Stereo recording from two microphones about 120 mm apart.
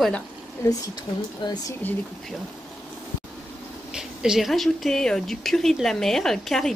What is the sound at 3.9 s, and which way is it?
Speech, 5° right (ahead or behind).